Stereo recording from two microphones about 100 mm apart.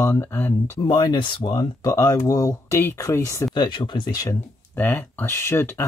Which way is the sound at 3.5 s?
50° left (ahead or behind).